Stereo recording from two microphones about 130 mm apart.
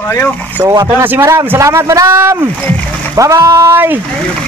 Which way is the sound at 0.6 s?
30° right (ahead or behind).